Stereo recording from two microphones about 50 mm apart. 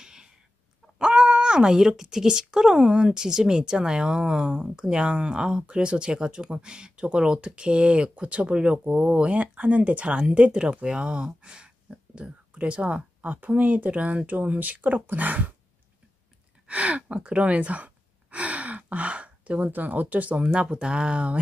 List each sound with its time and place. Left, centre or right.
0.0 s a sound: centre
0.9 s speech: centre; by 15.5 s right
16.6 s speech: right
20.4 s speech: centre